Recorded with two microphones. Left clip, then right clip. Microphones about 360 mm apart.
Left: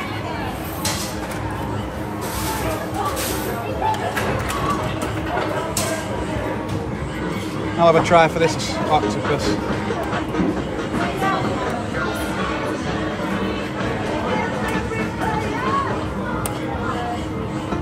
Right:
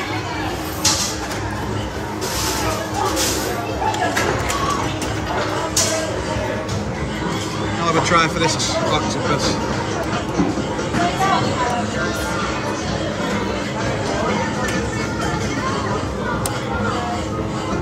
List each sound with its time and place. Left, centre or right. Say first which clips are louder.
7.8 s speech: left 4 dB; centre